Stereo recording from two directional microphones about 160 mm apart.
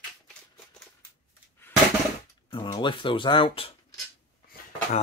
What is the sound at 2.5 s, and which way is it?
Speech, 30° left (ahead or behind).